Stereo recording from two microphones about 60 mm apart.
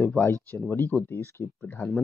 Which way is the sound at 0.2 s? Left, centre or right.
Left.